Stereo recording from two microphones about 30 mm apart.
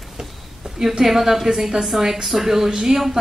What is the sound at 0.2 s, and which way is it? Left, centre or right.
A woman's voice, centre.